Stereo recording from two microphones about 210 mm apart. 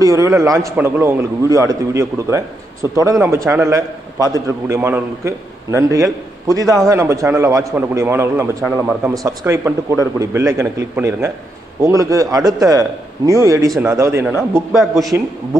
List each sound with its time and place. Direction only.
0.0 s a man's voice: 15° right (ahead or behind)
14.7 s a man's voice: centre (ahead or behind)